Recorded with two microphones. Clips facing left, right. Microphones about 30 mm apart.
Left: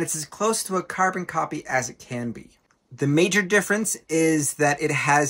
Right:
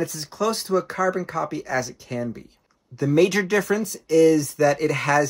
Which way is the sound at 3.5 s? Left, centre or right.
Left.